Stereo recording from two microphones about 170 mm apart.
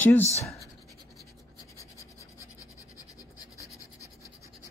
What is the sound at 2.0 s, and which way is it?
Scratch, 20° left (ahead or behind).